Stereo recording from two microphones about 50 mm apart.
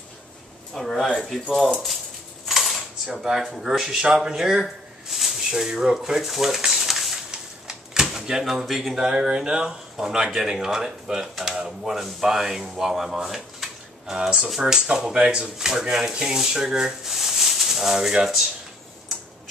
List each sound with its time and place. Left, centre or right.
0.7 s speech: centre
2.4 s speech: centre